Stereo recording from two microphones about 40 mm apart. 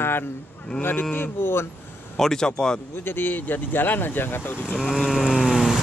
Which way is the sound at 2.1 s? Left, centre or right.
Centre.